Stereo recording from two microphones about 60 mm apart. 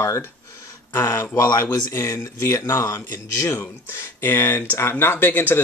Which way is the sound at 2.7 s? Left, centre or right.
Left.